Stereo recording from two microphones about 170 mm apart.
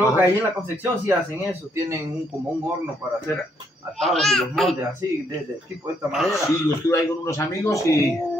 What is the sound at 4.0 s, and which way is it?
Speech, centre (ahead or behind).